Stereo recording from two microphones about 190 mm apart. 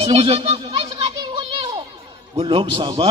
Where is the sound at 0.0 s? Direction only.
30° right (ahead or behind).